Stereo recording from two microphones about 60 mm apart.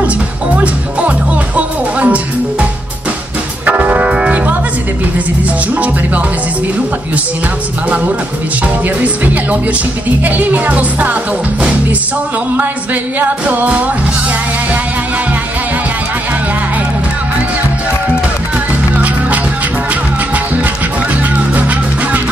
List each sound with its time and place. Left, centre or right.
1.6 s music: right
3.6 s music: right
8.8 s speech: right
13.5 s speech: right
21.5 s music: right